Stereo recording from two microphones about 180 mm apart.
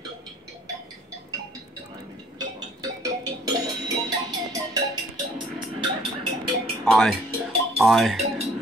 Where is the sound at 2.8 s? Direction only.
20° right (ahead or behind).